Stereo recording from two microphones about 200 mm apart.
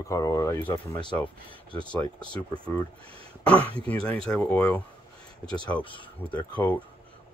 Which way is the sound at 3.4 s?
5° left (ahead or behind).